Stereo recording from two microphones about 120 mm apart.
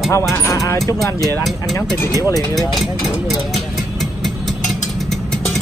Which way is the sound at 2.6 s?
Centre (ahead or behind).